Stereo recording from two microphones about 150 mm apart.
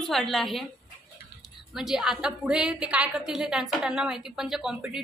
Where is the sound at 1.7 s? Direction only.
Centre (ahead or behind).